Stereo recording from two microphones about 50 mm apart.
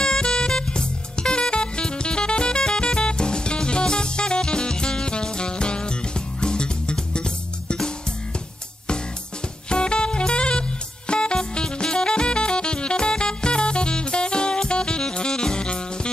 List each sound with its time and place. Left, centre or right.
0.0 s music: centre
9.7 s music: centre